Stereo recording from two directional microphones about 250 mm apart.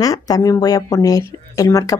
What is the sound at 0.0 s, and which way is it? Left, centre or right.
A woman's voice, centre.